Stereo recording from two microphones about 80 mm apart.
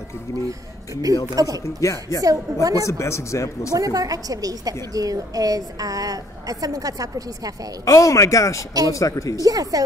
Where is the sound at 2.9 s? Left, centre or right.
Left.